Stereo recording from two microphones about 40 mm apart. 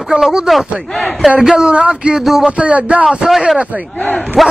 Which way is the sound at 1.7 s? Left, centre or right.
Right.